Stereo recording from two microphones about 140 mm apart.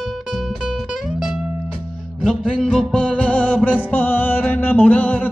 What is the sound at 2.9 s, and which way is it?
Music, 10° left (ahead or behind).